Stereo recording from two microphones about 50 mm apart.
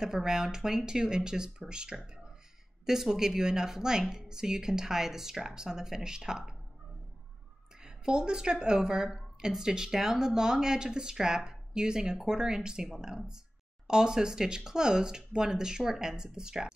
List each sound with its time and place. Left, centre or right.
0.0 s a woman's voice: centre
7.8 s a woman's voice: centre